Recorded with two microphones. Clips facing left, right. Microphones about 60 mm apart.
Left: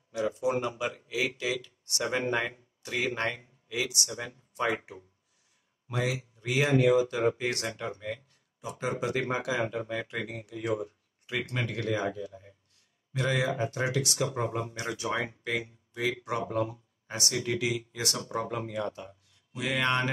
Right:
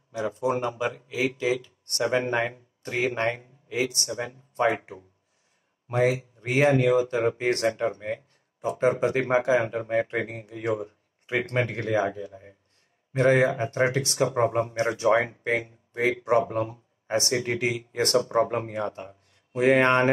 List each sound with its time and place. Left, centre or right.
0.1 s speech: right